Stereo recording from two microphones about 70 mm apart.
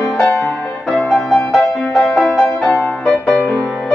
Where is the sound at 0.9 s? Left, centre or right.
Centre.